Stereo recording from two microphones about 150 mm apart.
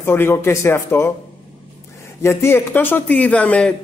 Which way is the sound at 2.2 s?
15° left (ahead or behind).